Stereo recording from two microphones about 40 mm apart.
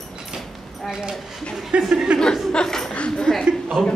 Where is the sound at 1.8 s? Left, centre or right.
Centre.